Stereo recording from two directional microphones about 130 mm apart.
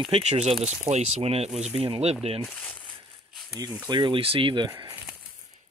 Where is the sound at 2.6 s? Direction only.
10° left (ahead or behind).